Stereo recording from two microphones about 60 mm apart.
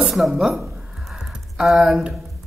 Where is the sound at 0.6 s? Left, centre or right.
Right.